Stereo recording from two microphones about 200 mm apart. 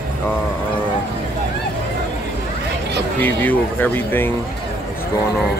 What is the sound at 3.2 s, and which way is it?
Speech, 10° left (ahead or behind).